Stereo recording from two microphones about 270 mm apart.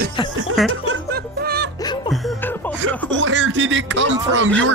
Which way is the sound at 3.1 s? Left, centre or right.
Right.